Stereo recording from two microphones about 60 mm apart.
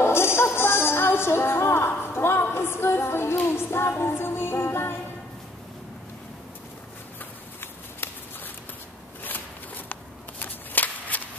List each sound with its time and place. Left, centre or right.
0.0 s music: left
8.0 s shuffling cards: left
9.2 s a sound: left